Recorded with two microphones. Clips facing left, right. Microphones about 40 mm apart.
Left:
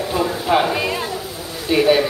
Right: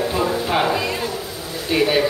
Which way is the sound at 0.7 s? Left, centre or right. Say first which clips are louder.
Left 1 dB; centre.